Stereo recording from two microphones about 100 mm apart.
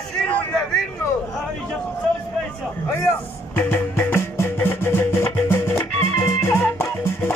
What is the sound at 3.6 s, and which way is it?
Music, 20° left (ahead or behind).